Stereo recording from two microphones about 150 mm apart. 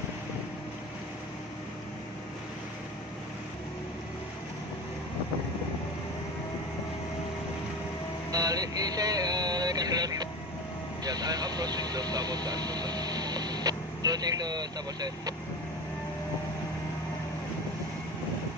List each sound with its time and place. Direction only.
8.3 s vehicle: 25° right (ahead or behind)
11.1 s speech: 25° right (ahead or behind)